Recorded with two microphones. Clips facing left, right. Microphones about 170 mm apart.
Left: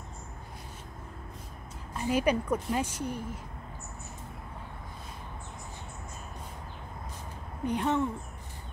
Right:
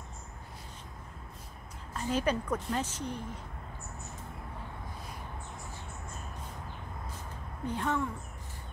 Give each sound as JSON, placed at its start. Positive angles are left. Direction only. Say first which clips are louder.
{"t": 2.0, "sound": "a woman's voice", "louder": "left 3 dB", "side_deg": 10}
{"t": 7.6, "sound": "speech", "louder": "left 4 dB", "side_deg": 20}